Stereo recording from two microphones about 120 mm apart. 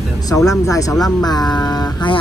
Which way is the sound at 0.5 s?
30° left (ahead or behind).